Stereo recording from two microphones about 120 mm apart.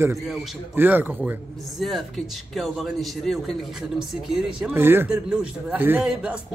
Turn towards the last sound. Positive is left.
turn(degrees=-15)  # may be behind; listen again after turning